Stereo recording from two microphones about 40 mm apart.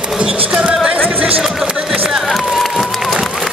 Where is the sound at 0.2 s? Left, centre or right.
Right.